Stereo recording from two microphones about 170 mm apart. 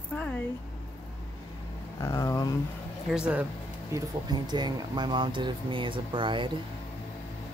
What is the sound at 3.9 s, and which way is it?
Speech, 25° right (ahead or behind).